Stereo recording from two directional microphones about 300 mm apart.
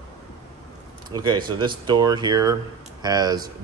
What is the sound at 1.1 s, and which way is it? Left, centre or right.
Speech, centre.